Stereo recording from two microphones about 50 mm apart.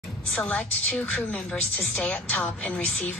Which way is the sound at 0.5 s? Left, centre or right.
Left.